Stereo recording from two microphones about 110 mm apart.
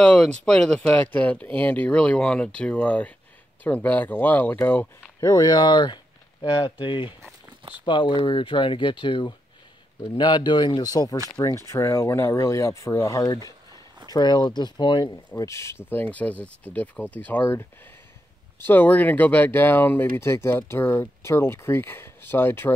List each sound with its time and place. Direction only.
0.0 s speech: 5° left (ahead or behind)
5.2 s speech: 30° left (ahead or behind)
13.5 s a sound: 35° right (ahead or behind)
14.1 s speech: 40° left (ahead or behind); by 17.6 s 20° left (ahead or behind)
18.7 s speech: 15° left (ahead or behind)